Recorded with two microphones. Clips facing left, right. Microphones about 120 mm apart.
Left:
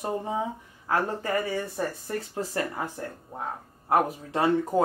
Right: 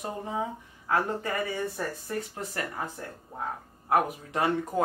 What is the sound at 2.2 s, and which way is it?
Speech, 30° left (ahead or behind).